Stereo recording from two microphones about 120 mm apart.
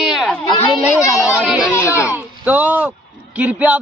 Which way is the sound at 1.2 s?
10° right (ahead or behind).